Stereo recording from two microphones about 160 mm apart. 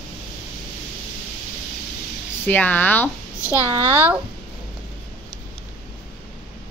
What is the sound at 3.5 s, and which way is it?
Speech, 15° right (ahead or behind).